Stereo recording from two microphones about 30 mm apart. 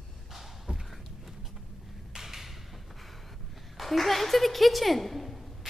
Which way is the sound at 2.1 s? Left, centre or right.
Centre.